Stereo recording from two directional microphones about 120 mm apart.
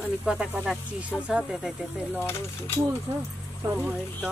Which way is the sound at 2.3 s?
20° left (ahead or behind).